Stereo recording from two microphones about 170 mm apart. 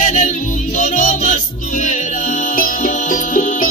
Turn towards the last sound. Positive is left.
turn(degrees=50)  # may be behind; listen again after turning